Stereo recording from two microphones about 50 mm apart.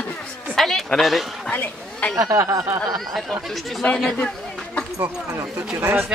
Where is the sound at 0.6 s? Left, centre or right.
Centre.